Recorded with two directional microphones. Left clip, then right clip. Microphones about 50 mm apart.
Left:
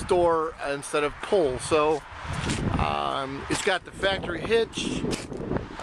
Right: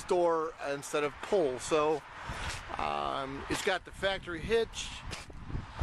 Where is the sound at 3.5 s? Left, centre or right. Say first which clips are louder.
Left 6 dB; centre.